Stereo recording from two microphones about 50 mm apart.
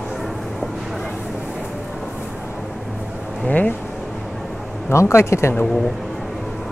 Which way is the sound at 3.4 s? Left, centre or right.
Left.